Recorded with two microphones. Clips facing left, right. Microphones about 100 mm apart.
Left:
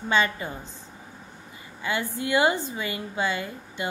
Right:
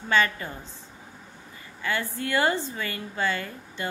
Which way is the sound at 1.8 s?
15° left (ahead or behind).